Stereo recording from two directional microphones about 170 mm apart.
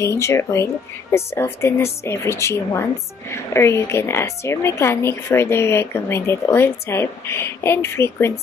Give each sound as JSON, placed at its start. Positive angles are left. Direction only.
{"t": 0.0, "sound": "a woman's voice", "side_deg": 15}